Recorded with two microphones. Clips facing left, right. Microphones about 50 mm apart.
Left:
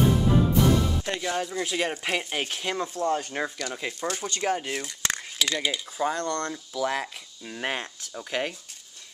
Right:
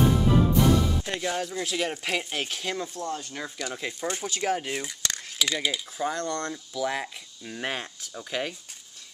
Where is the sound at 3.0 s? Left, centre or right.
Left.